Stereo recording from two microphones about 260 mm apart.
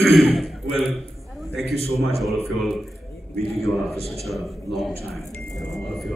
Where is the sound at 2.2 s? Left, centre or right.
Centre.